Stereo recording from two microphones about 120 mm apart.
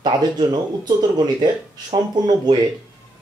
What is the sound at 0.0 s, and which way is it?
Speech, 35° right (ahead or behind).